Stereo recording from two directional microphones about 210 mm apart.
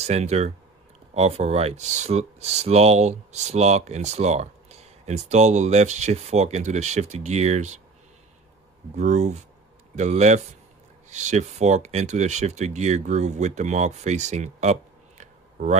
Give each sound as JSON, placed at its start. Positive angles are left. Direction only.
{"t": 0.0, "sound": "speech", "side_deg": -30}
{"t": 8.9, "sound": "speech", "side_deg": -35}